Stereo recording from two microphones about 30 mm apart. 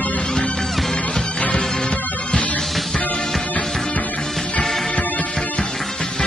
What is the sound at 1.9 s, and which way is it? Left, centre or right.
Music, left.